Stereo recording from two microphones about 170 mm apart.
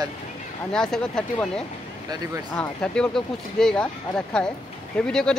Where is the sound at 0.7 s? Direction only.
5° left (ahead or behind).